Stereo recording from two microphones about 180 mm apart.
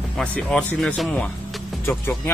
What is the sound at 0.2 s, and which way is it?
Speech, 5° left (ahead or behind).